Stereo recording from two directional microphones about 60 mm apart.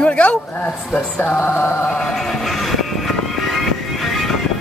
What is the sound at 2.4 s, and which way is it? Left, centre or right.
Music, centre.